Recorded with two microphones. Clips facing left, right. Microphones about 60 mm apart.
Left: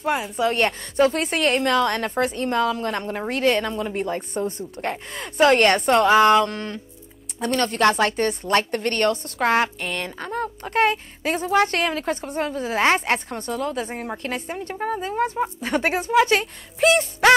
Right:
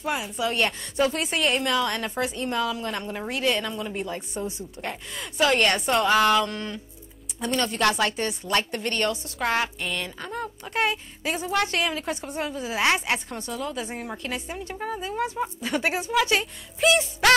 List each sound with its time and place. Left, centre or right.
0.4 s speech: left
6.0 s a sound: left
6.4 s a woman's voice: left